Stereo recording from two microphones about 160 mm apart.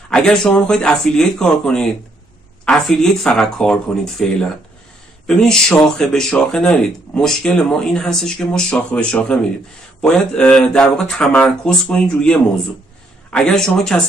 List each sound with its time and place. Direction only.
0.1 s speech: 5° left (ahead or behind)